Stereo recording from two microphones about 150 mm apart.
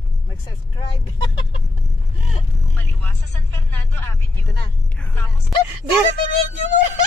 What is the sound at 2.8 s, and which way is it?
Vehicle, 10° left (ahead or behind).